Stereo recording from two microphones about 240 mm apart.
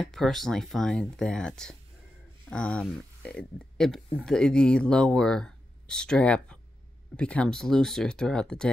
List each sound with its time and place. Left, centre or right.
0.0 s speech: centre